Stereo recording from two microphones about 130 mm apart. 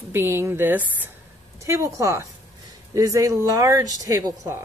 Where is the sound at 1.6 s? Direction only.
25° right (ahead or behind).